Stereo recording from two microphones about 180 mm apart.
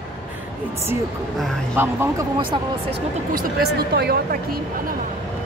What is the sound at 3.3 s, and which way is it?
Speech, 55° right (ahead or behind).